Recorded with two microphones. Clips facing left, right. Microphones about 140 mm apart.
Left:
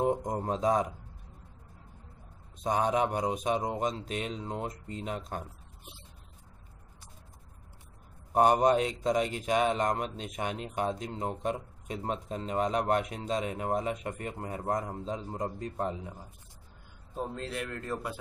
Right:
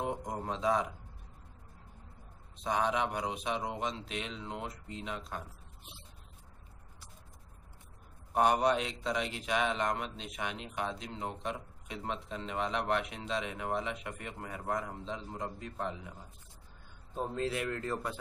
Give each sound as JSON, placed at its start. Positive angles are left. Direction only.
{"t": 0.0, "sound": "speech", "side_deg": 45}
{"t": 2.6, "sound": "speech", "side_deg": 45}
{"t": 8.3, "sound": "speech", "side_deg": 45}
{"t": 17.1, "sound": "a man's voice", "side_deg": 0}